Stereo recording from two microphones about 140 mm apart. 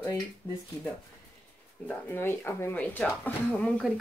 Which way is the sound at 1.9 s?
15° left (ahead or behind).